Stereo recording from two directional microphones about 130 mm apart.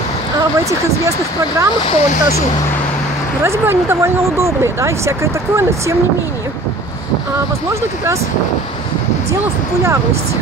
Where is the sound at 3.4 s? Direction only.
20° right (ahead or behind).